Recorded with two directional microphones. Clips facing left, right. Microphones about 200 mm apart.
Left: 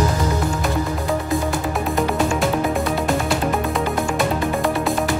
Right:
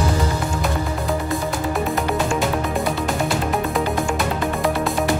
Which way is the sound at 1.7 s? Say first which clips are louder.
Right 2 dB; centre (ahead or behind).